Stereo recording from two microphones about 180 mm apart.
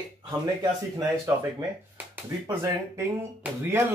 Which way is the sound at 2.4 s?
20° right (ahead or behind).